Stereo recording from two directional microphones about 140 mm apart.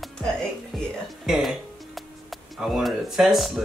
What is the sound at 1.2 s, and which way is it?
Music, centre (ahead or behind).